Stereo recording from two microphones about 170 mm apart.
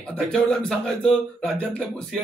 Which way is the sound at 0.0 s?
5° left (ahead or behind).